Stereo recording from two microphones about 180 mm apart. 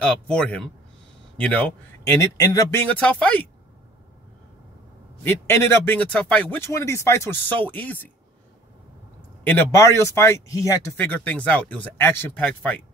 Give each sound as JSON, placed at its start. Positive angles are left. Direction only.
{"t": 0.0, "sound": "speech", "side_deg": 5}
{"t": 5.2, "sound": "speech", "side_deg": 15}
{"t": 9.4, "sound": "speech", "side_deg": 10}